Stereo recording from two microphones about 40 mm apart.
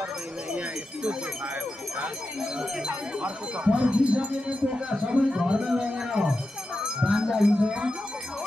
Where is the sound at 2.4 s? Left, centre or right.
Right.